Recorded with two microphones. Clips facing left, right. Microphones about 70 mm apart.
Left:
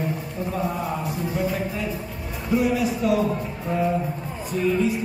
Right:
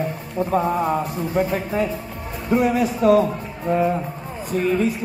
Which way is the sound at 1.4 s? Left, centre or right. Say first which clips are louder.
Right 8 dB; right.